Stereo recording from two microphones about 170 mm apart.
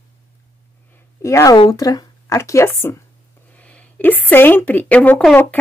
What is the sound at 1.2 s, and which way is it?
A woman's voice, 20° left (ahead or behind).